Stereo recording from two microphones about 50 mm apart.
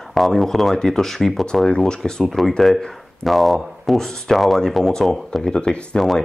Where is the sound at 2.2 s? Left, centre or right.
Centre.